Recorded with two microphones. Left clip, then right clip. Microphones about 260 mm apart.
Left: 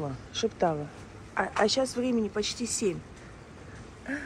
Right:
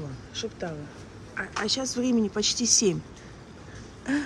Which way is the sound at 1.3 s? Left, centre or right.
Centre.